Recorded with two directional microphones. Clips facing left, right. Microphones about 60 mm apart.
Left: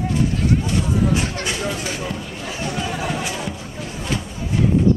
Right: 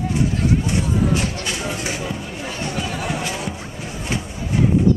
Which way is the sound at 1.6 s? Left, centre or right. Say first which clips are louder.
Even; centre.